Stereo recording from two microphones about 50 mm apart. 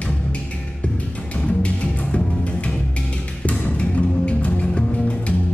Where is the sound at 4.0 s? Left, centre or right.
Left.